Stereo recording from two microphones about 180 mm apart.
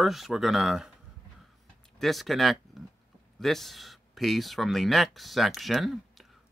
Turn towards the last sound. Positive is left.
turn(degrees=0)  # may be behind; listen again after turning